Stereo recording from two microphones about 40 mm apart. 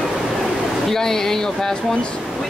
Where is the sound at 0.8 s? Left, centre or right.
Centre.